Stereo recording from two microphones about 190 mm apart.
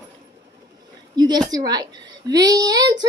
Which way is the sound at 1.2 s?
20° right (ahead or behind).